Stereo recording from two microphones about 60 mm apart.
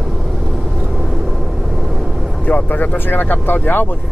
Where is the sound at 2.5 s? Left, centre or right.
Left.